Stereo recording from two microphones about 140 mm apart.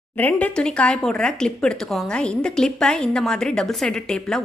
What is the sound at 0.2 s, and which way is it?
Speech, 10° left (ahead or behind).